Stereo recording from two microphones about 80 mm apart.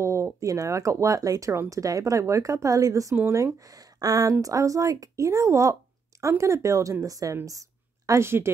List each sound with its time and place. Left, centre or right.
0.0 s a woman's voice: right
8.1 s speech: right